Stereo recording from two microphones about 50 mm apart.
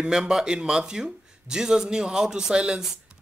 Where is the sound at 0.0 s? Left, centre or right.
Centre.